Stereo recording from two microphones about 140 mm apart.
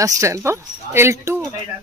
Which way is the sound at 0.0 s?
20° right (ahead or behind).